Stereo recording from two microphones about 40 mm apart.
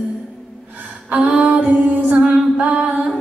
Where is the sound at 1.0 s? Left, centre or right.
Right.